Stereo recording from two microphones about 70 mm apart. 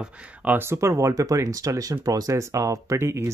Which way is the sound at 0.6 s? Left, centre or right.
Right.